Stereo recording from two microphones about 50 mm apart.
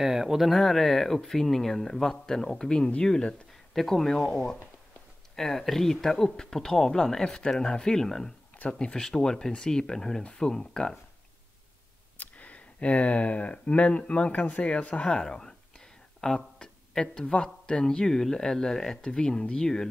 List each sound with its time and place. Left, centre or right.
0.0 s speech: centre
0.5 s speech: centre
3.7 s speech: centre
12.2 s speech: left
15.2 s speech: centre